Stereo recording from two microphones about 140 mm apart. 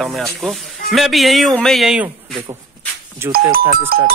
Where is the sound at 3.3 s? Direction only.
90° right.